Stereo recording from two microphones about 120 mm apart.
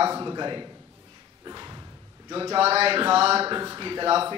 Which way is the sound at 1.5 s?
35° right (ahead or behind).